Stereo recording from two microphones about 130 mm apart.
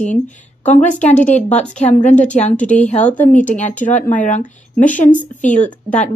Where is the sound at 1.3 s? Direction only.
60° left (ahead or behind).